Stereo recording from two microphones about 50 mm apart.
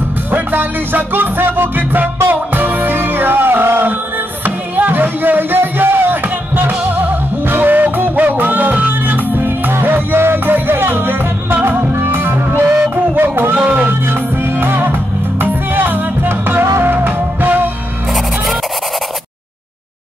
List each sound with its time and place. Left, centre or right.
0.3 s music: right
14.0 s music: right